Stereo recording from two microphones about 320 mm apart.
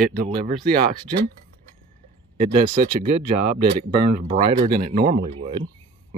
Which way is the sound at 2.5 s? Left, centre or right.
Right.